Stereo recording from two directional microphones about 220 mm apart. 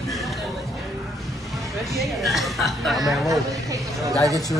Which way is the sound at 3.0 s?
15° right (ahead or behind).